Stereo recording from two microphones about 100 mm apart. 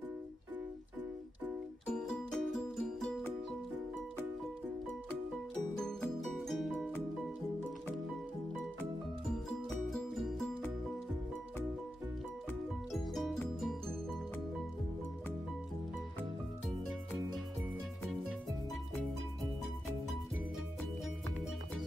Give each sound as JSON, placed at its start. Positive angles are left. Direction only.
{"t": 1.9, "sound": "music", "side_deg": 10}
{"t": 5.8, "sound": "music", "side_deg": 5}
{"t": 9.5, "sound": "music", "side_deg": 0}
{"t": 12.9, "sound": "music", "side_deg": 0}
{"t": 16.6, "sound": "music", "side_deg": 0}